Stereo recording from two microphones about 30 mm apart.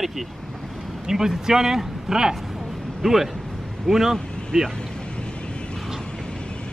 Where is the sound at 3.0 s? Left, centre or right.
Centre.